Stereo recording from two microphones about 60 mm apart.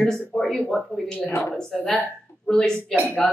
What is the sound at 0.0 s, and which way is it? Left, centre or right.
A woman's voice, centre.